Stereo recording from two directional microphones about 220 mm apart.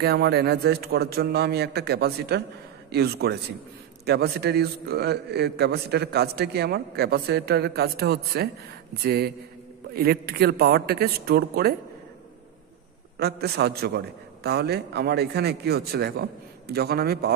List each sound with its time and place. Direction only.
0.0 s a man's voice: 45° right (ahead or behind)
13.2 s a man's voice: 50° right (ahead or behind)